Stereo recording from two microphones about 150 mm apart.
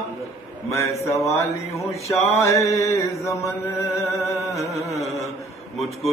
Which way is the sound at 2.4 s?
20° left (ahead or behind).